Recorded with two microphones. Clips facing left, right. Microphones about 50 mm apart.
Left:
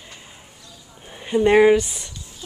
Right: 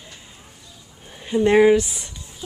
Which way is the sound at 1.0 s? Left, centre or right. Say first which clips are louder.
Left 1 dB; centre.